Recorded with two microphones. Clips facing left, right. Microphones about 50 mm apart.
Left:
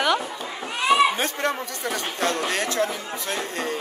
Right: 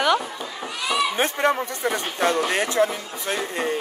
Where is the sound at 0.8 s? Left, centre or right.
Left.